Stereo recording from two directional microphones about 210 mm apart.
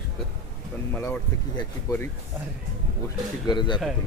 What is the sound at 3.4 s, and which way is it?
Speech, 20° left (ahead or behind).